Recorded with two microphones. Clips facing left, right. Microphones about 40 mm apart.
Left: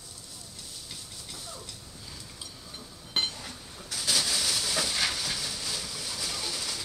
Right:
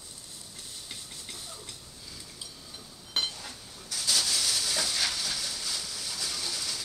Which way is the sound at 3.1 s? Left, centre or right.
Centre.